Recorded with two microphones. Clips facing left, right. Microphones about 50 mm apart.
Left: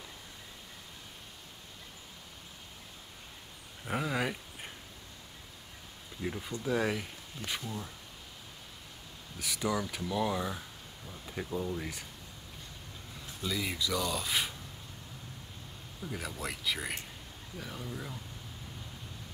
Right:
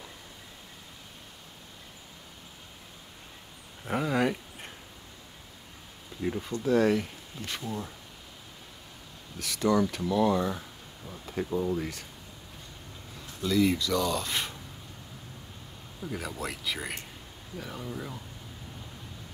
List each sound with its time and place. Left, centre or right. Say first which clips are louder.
3.8 s a sound: right 5 dB; centre
6.2 s speech: right 6 dB; centre
7.6 s speech: right 5 dB; centre
9.4 s speech: right 7 dB; centre
13.4 s speech: right 9 dB; centre
16.0 s speech: right 4 dB; centre